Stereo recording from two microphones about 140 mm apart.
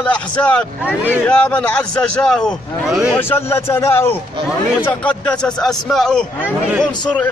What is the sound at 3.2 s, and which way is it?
A man's voice, 15° left (ahead or behind).